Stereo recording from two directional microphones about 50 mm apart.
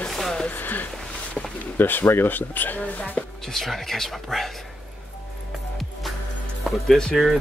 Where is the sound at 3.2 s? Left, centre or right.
Centre.